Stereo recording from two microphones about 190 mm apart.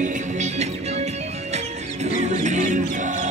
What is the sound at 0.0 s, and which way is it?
Music, 35° right (ahead or behind).